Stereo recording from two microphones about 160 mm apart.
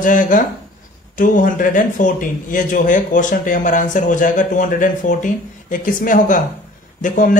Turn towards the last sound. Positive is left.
turn(degrees=55)  # may be behind; listen again after turning